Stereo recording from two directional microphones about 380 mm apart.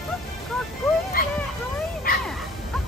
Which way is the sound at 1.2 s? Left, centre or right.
Left.